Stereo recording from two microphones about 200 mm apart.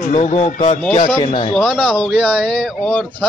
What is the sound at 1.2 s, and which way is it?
Speech, 25° left (ahead or behind).